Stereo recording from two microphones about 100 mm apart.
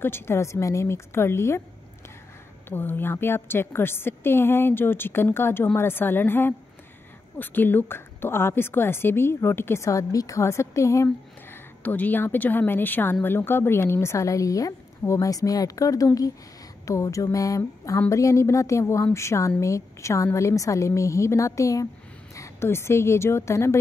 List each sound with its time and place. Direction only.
0.0 s speech: 25° left (ahead or behind)
2.7 s speech: 20° left (ahead or behind)
11.8 s a woman's voice: 15° left (ahead or behind)